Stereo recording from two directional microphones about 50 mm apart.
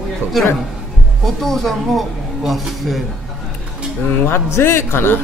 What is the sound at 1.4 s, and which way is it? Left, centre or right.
A man's voice, centre.